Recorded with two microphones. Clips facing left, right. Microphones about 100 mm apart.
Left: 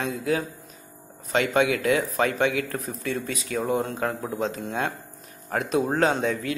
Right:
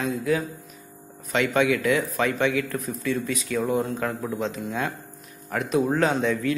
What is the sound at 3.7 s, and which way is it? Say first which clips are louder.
Speech: left 2 dB; 25° left (ahead or behind).